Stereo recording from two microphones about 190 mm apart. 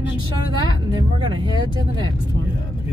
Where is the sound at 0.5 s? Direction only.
25° right (ahead or behind).